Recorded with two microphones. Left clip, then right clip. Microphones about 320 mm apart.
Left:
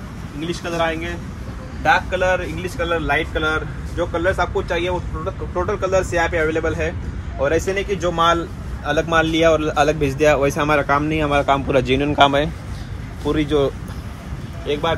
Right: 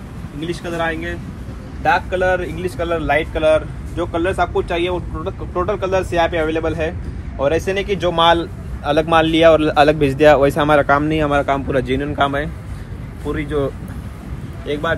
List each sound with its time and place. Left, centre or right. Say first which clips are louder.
0.4 s a man's voice: even; centre; by 13.7 s left
14.7 s speech: even; centre